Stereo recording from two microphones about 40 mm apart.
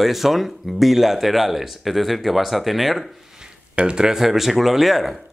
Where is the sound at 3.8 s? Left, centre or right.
Centre.